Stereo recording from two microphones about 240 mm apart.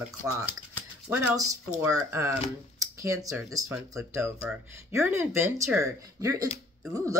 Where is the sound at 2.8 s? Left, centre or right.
Centre.